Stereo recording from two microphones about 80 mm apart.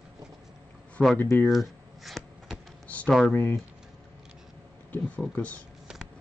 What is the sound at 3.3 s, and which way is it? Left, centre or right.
Speech, left.